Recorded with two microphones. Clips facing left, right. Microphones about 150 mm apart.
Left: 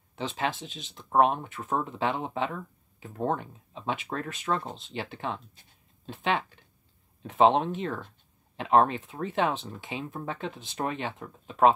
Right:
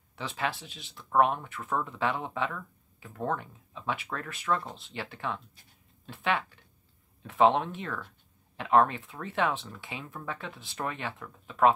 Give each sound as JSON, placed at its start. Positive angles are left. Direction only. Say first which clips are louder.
{"t": 0.1, "sound": "speech", "louder": "left 3 dB", "side_deg": 20}